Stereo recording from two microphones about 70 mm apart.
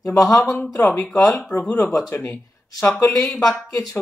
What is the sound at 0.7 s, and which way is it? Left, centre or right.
Speech, left.